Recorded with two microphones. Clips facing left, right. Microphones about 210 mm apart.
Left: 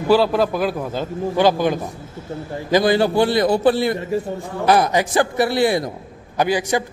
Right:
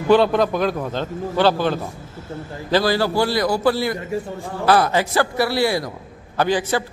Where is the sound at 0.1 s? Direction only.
5° left (ahead or behind).